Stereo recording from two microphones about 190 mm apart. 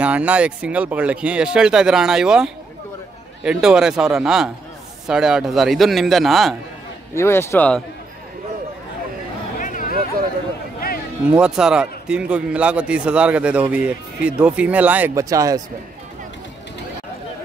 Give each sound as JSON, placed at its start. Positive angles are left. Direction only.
{"t": 0.0, "sound": "a man's voice", "side_deg": -5}
{"t": 7.2, "sound": "a man's voice", "side_deg": 15}
{"t": 9.6, "sound": "a sound", "side_deg": 45}
{"t": 11.3, "sound": "a man's voice", "side_deg": -5}